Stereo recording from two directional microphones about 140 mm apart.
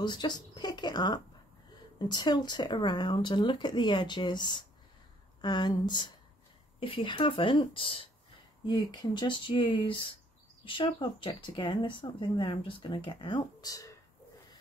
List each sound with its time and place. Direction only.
0.0 s speech: 30° left (ahead or behind)
8.6 s speech: 30° left (ahead or behind)